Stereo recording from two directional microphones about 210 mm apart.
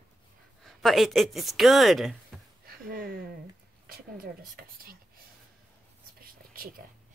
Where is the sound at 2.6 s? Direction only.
45° right (ahead or behind).